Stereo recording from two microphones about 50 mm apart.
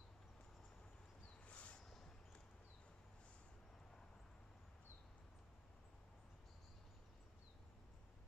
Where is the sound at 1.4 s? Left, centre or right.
Left.